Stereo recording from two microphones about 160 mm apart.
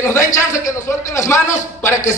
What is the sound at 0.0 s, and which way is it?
A man's voice, 15° left (ahead or behind).